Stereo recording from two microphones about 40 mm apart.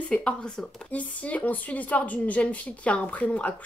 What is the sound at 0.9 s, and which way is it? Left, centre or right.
Speech, left.